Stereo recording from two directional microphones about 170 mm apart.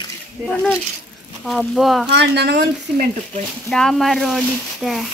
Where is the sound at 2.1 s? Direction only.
75° right (ahead or behind).